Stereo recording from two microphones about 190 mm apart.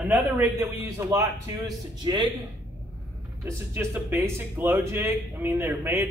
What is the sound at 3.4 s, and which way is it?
Speech, 10° right (ahead or behind).